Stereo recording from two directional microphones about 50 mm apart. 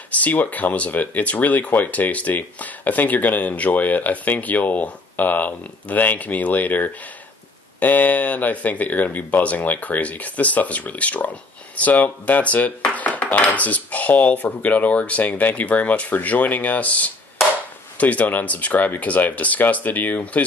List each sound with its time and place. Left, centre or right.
0.1 s speech: left